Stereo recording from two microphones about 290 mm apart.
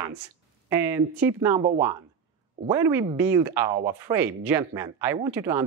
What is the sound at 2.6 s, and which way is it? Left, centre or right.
Speech, centre.